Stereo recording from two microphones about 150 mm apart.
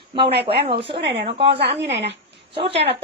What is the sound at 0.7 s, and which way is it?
A woman's voice, 35° right (ahead or behind).